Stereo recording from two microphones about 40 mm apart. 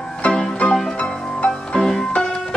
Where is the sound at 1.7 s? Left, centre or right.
Centre.